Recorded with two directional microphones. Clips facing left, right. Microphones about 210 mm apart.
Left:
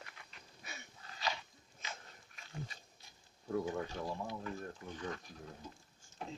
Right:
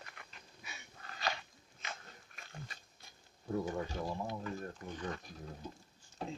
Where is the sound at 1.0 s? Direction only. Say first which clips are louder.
Right 1 dB; 60° right (ahead or behind).